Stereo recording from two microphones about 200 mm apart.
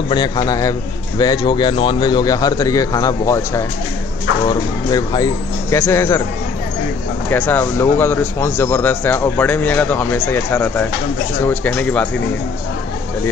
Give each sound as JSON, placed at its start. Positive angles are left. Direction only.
{"t": 0.1, "sound": "a man's voice", "side_deg": 20}
{"t": 7.2, "sound": "speech", "side_deg": 10}